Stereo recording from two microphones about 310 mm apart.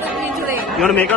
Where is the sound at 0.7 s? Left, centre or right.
Centre.